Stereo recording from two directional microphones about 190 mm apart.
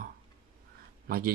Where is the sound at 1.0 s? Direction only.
50° right (ahead or behind).